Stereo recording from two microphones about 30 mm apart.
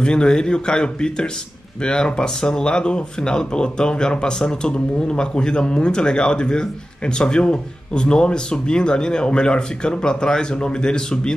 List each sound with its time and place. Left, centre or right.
0.0 s speech: left